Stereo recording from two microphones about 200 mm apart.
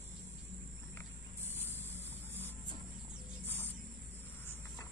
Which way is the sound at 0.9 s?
10° left (ahead or behind).